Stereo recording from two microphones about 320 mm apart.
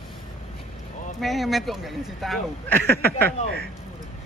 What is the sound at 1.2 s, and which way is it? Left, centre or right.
Speech, centre.